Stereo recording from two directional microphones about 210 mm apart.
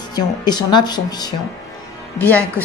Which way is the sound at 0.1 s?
20° left (ahead or behind).